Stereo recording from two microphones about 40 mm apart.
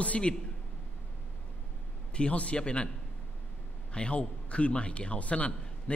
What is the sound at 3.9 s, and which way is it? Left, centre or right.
A man's voice, left.